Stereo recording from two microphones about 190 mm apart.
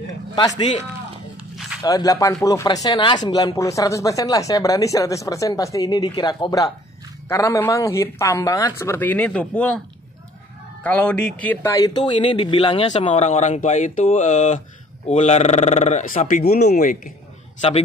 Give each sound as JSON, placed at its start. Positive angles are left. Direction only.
{"t": 1.8, "sound": "speech", "side_deg": 20}
{"t": 10.8, "sound": "speech", "side_deg": 5}
{"t": 11.4, "sound": "speech", "side_deg": 15}
{"t": 17.6, "sound": "speech", "side_deg": 30}